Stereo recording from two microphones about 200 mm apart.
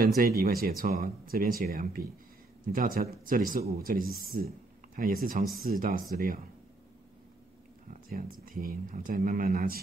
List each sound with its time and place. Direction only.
0.4 s speech: 45° right (ahead or behind)
8.1 s speech: 45° right (ahead or behind)